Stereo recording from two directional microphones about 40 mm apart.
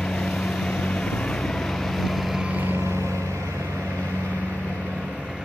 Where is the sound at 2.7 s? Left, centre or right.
Right.